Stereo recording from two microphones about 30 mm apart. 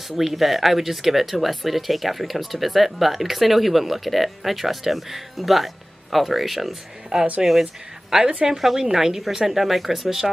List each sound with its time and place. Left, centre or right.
0.1 s speech: centre
7.1 s a woman's voice: right
8.5 s speech: centre